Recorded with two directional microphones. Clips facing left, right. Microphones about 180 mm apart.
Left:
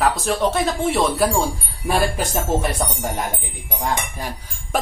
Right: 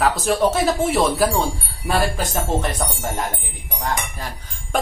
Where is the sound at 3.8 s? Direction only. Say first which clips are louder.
Left 1 dB; 15° left (ahead or behind).